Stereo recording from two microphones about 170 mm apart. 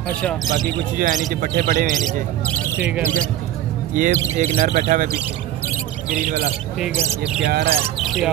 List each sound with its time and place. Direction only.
0.5 s speech: 55° right (ahead or behind)
2.4 s speech: 10° left (ahead or behind)
3.9 s speech: 50° right (ahead or behind)
7.4 s speech: 70° right (ahead or behind)
8.0 s a sound: centre (ahead or behind)